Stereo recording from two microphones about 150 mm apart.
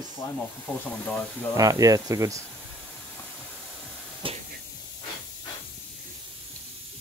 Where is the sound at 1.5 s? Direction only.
20° right (ahead or behind).